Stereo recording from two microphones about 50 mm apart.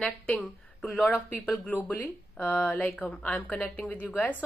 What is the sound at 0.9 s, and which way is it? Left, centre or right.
Speech, left.